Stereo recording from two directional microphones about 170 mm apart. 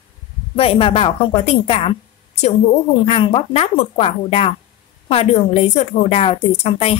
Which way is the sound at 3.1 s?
35° left (ahead or behind).